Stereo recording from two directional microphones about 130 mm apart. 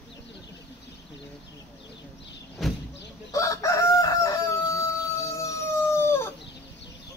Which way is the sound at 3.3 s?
25° left (ahead or behind).